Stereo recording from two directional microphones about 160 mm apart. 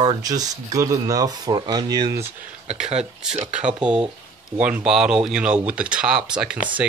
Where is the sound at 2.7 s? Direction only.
40° right (ahead or behind).